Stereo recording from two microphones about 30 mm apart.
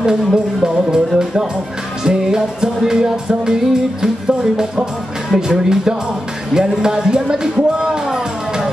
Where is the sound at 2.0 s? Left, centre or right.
Right.